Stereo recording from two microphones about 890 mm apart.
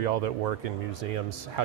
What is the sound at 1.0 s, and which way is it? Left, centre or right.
Speech, right.